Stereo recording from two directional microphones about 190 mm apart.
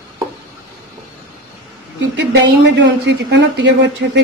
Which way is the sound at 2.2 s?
65° right (ahead or behind).